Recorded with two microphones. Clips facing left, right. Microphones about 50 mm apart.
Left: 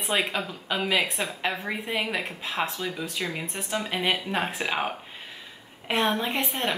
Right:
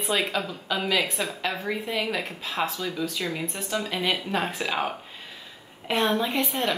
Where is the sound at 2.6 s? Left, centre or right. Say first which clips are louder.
Right 2 dB; left.